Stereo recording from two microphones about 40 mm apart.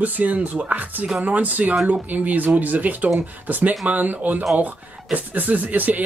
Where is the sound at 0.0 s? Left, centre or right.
Right.